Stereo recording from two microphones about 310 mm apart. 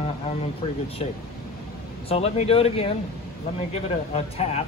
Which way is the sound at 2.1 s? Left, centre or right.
Centre.